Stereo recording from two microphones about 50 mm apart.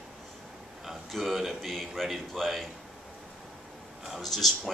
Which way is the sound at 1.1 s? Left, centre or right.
Centre.